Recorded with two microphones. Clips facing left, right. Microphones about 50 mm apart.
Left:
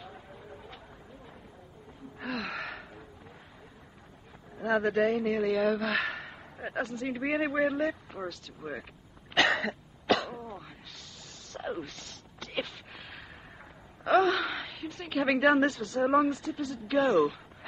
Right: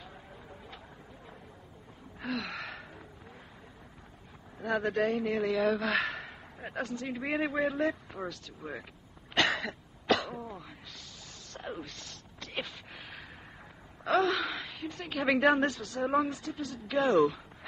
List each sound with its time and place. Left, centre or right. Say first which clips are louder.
2.1 s gasp: left 1 dB; centre
4.6 s a man's voice: left 3 dB; centre
9.4 s cough: left 3 dB; centre
10.0 s cough: left 1 dB; centre
12.4 s a sound: left 3 dB; centre
14.1 s a sound: left 3 dB; centre
16.0 s a man's voice: left 4 dB; centre